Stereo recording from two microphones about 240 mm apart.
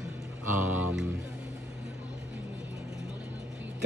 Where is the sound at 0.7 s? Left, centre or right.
Centre.